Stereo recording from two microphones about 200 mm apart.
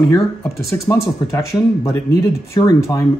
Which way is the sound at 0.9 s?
15° left (ahead or behind).